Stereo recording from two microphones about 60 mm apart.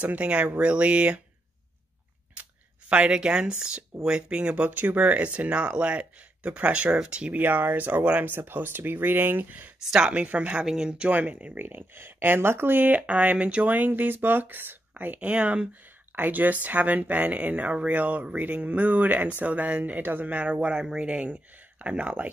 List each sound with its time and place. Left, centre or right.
0.0 s speech: right
2.9 s speech: centre
7.3 s speech: right
9.8 s speech: centre